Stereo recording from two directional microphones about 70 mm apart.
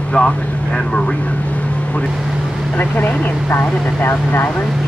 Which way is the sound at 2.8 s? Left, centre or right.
Left.